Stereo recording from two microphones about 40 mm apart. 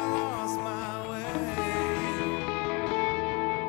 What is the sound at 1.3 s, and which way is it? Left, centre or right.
Music, centre.